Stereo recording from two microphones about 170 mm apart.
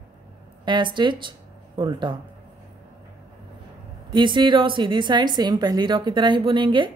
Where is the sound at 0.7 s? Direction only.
25° right (ahead or behind).